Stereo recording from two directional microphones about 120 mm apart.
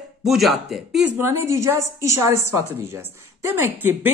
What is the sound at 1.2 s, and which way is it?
A woman's voice, 20° right (ahead or behind).